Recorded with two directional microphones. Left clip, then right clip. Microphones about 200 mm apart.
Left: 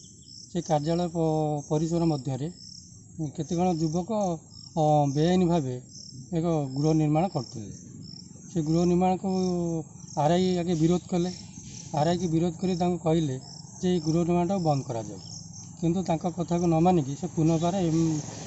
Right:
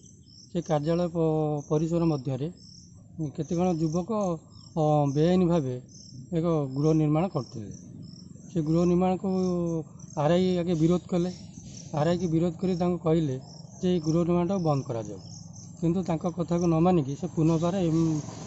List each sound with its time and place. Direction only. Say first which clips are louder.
0.5 s speech: even; centre (ahead or behind)